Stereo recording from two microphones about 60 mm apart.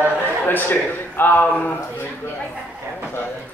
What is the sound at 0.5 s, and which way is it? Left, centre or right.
A man's voice, left.